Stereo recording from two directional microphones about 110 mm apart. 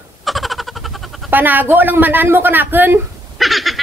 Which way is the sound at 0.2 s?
Centre (ahead or behind).